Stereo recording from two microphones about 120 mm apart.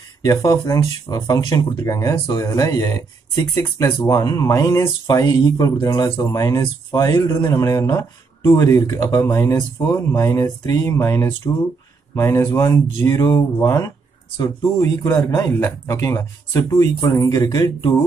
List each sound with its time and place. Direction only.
0.2 s speech: 30° left (ahead or behind)
8.5 s speech: 25° left (ahead or behind)